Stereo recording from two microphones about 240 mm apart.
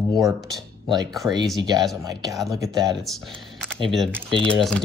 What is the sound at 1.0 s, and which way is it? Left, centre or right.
Speech, centre.